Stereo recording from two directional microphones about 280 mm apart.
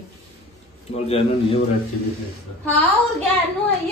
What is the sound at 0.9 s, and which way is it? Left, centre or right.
Speech, left.